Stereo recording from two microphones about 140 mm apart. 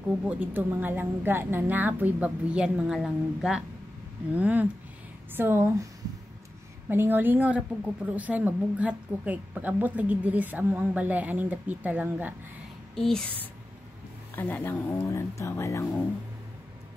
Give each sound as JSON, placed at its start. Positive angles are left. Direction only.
{"t": 0.3, "sound": "a woman's voice", "side_deg": -10}
{"t": 6.9, "sound": "a woman's voice", "side_deg": -15}
{"t": 12.9, "sound": "speech", "side_deg": 5}
{"t": 14.3, "sound": "speech", "side_deg": 15}